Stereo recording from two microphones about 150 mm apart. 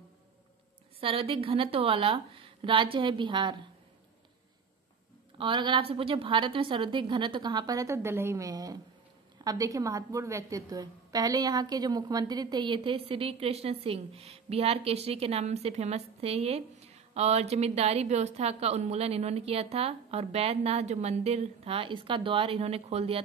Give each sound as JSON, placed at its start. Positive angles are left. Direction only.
{"t": 1.0, "sound": "a woman's voice", "side_deg": -40}
{"t": 5.4, "sound": "a woman's voice", "side_deg": -30}